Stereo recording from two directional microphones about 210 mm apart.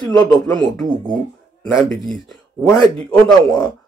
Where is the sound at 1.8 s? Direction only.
Centre (ahead or behind).